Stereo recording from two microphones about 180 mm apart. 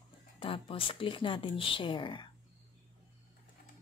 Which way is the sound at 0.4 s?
30° left (ahead or behind).